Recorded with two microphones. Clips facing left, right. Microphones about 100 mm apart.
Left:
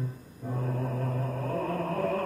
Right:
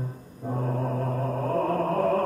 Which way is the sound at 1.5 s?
45° right (ahead or behind).